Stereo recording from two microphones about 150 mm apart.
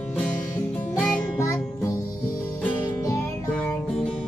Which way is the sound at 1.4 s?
20° left (ahead or behind).